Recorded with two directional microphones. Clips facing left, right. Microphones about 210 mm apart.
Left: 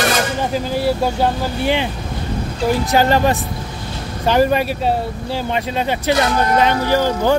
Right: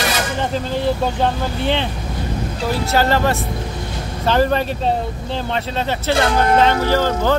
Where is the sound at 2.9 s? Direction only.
15° left (ahead or behind).